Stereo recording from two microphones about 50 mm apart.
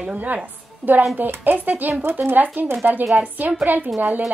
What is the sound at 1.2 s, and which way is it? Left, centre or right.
A woman's voice, right.